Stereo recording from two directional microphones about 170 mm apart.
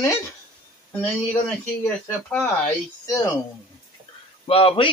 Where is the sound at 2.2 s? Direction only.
10° left (ahead or behind).